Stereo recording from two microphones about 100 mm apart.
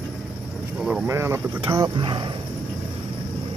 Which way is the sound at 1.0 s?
25° right (ahead or behind).